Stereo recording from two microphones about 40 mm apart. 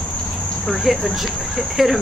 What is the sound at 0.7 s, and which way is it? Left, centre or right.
Speech, centre.